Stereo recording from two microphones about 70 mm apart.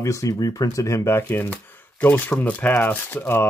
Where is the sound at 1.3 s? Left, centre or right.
Left.